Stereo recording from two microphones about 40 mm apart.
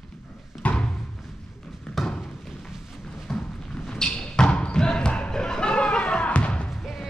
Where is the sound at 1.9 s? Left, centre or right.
Centre.